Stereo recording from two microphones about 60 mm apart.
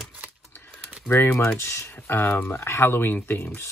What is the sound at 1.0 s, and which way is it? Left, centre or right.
Speech, left.